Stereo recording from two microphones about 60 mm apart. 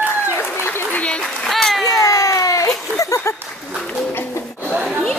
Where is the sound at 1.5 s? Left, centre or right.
Centre.